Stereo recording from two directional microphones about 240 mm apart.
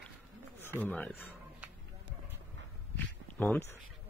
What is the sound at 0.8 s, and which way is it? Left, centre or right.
Speech, centre.